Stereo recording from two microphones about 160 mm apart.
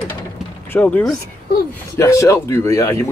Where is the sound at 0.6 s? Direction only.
10° left (ahead or behind).